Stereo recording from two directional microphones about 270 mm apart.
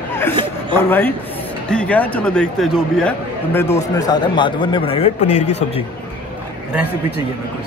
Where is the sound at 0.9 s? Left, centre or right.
Centre.